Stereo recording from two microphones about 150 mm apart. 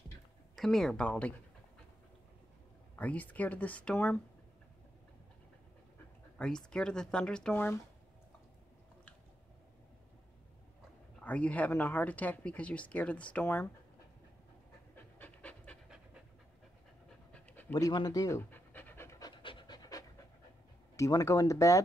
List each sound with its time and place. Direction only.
0.6 s speech: 5° left (ahead or behind)
3.0 s speech: 10° left (ahead or behind)
6.3 s speech: 5° left (ahead or behind)
11.1 s speech: 10° left (ahead or behind)
15.1 s pant: 10° left (ahead or behind)
17.3 s pant: 10° left (ahead or behind)
17.7 s pant: 25° left (ahead or behind)
20.9 s speech: 20° left (ahead or behind)